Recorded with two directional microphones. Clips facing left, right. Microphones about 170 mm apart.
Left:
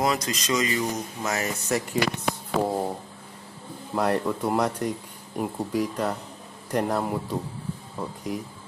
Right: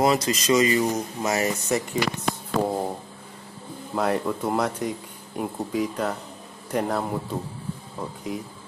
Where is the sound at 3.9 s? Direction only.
5° right (ahead or behind).